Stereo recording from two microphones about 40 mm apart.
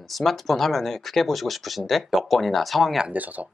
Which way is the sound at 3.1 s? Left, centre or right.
Right.